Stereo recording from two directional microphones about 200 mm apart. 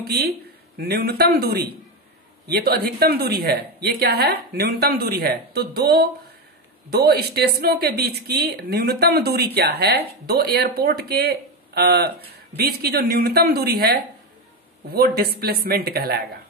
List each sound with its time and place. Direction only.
0.0 s speech: 55° right (ahead or behind)